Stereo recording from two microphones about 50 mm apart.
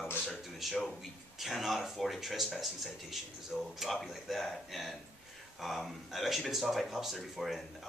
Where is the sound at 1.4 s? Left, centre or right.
Centre.